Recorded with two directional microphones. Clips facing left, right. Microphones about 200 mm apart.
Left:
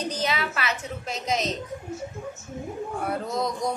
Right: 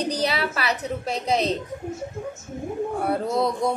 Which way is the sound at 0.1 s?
35° right (ahead or behind).